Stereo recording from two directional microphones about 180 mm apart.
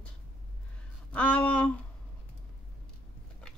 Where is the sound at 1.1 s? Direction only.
5° left (ahead or behind).